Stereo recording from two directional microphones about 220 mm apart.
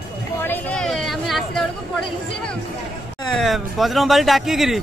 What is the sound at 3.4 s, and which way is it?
Speech, centre (ahead or behind).